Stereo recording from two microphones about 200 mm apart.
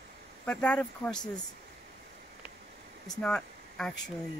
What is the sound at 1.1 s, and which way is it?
Speech, 20° left (ahead or behind).